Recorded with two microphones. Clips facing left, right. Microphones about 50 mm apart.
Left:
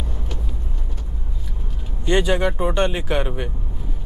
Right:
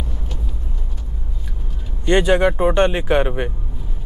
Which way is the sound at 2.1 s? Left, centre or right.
Right.